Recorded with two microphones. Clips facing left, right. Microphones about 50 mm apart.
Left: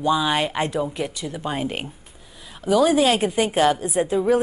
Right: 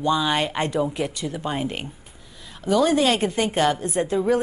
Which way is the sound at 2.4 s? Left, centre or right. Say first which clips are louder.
Left 2 dB; centre.